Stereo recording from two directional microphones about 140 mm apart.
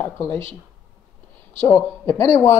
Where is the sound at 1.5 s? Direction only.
15° left (ahead or behind).